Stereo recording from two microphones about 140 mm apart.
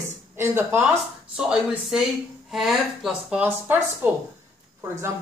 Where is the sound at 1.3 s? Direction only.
5° right (ahead or behind).